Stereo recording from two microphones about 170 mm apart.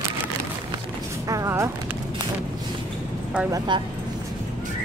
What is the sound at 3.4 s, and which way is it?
Speech, 25° right (ahead or behind).